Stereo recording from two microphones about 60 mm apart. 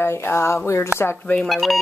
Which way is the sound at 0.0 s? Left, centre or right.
Left.